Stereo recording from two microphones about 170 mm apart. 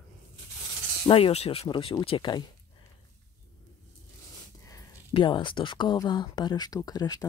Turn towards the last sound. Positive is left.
turn(degrees=25)  # may be behind; listen again after turning